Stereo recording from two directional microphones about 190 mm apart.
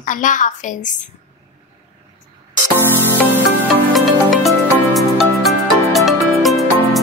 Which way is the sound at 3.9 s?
Centre (ahead or behind).